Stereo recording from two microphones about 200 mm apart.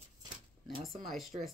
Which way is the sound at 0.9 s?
Centre (ahead or behind).